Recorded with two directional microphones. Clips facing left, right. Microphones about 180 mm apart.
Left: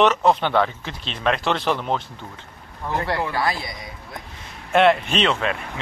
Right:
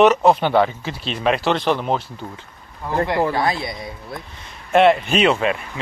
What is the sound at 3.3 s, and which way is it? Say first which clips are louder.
Speech: right 3 dB; 25° right (ahead or behind).